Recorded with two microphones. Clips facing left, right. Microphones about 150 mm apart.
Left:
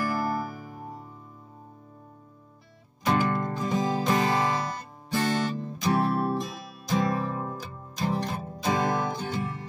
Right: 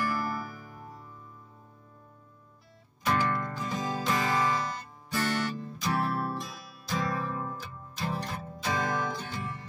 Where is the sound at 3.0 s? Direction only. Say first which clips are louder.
Left 4 dB; 20° left (ahead or behind).